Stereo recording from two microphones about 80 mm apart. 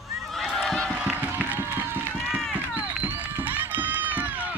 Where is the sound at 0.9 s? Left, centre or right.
Right.